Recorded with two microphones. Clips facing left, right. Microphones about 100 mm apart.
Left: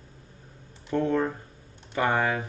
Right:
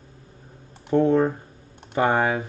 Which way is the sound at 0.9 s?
25° right (ahead or behind).